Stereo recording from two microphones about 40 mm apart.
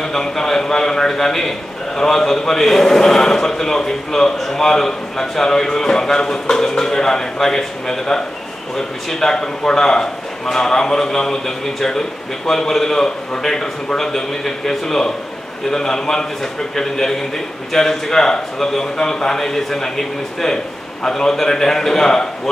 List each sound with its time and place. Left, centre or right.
0.0 s a man's voice: centre
21.0 s a man's voice: centre